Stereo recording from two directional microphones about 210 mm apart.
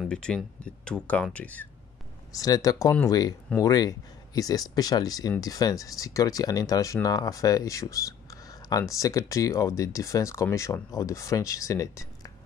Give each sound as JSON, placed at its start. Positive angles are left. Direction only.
{"t": 0.0, "sound": "speech", "side_deg": 5}